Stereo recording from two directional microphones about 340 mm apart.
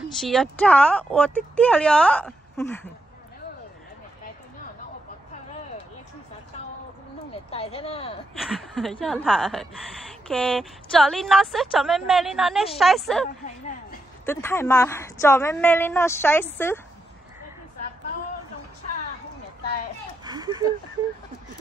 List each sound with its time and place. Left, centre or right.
0.2 s a woman's voice: centre
7.5 s a woman's voice: centre
8.4 s a woman's voice: centre
20.2 s a sound: centre